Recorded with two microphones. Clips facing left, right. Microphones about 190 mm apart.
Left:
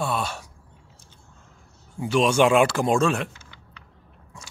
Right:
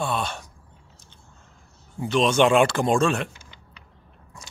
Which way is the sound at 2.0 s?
10° left (ahead or behind).